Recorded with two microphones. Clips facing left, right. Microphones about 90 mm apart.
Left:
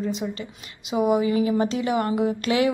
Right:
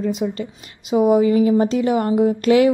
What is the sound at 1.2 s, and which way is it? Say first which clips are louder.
A woman's voice: right 6 dB; 40° right (ahead or behind).